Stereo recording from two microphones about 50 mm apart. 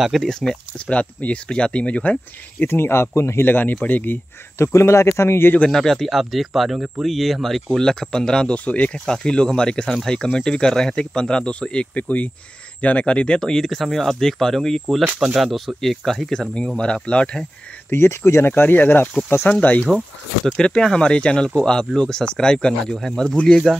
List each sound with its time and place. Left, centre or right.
0.2 s speech: centre
0.7 s speech: left
2.6 s speech: left
3.4 s speech: left
4.6 s speech: left
5.7 s speech: centre
8.6 s speech: left
9.0 s speech: centre
16.6 s speech: centre
17.9 s speech: left
18.5 s speech: left
20.4 s speech: centre
22.9 s speech: centre